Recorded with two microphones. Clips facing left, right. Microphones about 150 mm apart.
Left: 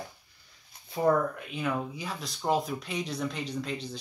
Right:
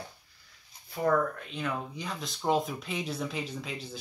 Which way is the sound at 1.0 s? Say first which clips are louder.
Left 4 dB; 25° left (ahead or behind).